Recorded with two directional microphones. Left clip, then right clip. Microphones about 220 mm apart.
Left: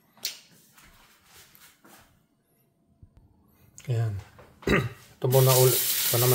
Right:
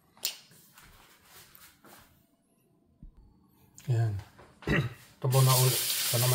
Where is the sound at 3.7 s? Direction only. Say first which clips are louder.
Left 2 dB; 15° left (ahead or behind).